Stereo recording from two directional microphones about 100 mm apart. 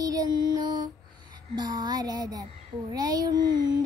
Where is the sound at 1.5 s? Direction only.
45° right (ahead or behind).